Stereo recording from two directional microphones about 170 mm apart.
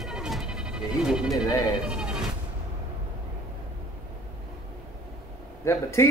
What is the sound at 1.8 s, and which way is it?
Bleat, 5° right (ahead or behind).